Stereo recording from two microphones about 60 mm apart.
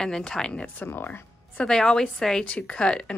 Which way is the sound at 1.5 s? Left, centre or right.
Centre.